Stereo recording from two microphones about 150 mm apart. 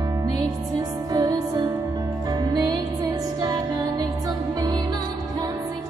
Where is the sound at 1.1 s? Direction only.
25° right (ahead or behind).